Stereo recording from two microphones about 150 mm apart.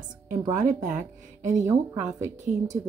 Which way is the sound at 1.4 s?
55° right (ahead or behind).